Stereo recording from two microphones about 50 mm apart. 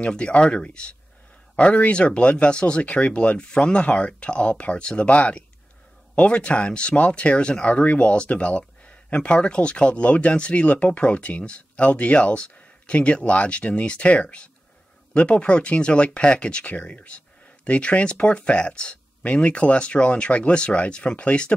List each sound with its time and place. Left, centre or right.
0.0 s speech: left